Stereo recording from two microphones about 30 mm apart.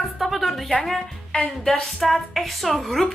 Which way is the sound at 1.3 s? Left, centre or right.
Left.